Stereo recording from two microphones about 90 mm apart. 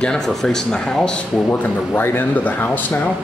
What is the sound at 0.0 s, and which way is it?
Speech, 5° left (ahead or behind).